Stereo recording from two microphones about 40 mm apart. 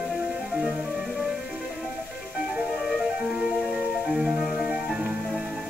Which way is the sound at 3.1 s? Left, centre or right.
Centre.